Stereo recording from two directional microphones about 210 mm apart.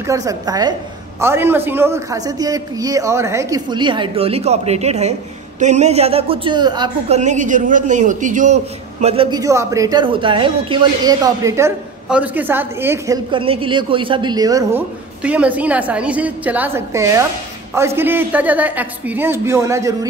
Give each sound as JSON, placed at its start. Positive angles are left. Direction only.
{"t": 0.0, "sound": "speech", "side_deg": -15}
{"t": 7.2, "sound": "a man's voice", "side_deg": -35}